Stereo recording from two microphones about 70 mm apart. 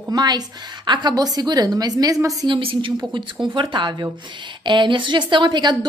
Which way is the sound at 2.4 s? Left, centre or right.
Right.